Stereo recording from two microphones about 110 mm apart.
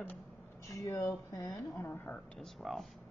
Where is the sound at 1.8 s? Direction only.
15° left (ahead or behind).